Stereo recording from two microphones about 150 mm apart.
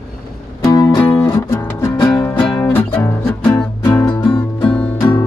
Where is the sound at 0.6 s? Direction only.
25° left (ahead or behind); by 3.7 s 10° left (ahead or behind).